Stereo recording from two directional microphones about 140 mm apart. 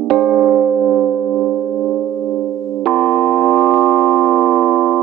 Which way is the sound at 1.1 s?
Centre (ahead or behind).